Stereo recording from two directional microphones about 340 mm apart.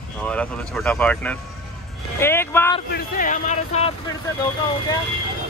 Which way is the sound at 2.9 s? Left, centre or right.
Left.